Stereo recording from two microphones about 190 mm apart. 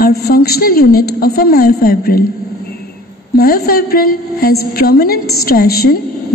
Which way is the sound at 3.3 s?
55° left (ahead or behind).